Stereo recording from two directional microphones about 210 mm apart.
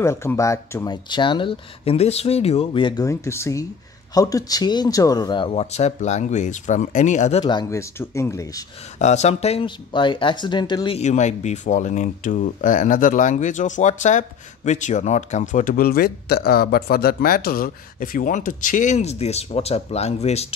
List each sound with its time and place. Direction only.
0.0 s speech: 10° left (ahead or behind)
9.0 s speech: 30° left (ahead or behind)
11.0 s speech: 35° left (ahead or behind)